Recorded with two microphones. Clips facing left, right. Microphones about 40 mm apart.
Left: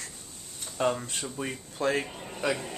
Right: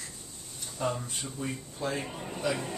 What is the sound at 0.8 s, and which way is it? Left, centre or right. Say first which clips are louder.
A man's voice: left 4 dB; left.